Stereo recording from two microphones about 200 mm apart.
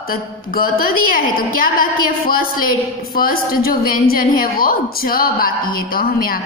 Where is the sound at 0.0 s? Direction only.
45° left (ahead or behind).